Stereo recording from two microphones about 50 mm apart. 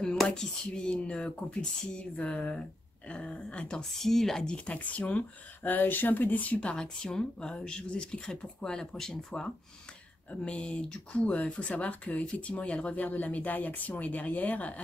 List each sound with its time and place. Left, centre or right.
0.3 s speech: centre
3.9 s speech: centre
4.6 s speech: left; by 9.2 s centre
10.3 s speech: left